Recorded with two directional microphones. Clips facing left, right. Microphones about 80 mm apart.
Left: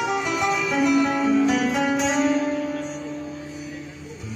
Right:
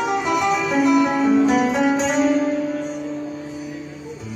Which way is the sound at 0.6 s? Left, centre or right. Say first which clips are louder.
Right 2 dB; right.